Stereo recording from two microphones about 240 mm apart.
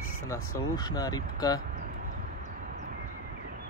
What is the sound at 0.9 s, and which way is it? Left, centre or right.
Speech, centre.